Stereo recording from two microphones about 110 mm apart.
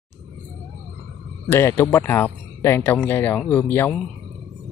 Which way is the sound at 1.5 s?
25° left (ahead or behind).